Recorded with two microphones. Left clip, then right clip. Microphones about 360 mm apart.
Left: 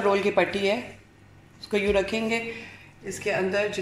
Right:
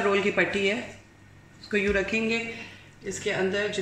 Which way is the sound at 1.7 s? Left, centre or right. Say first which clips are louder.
Left 2 dB; left.